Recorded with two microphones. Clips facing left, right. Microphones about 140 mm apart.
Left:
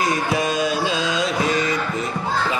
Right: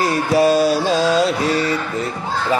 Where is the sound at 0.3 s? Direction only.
35° right (ahead or behind).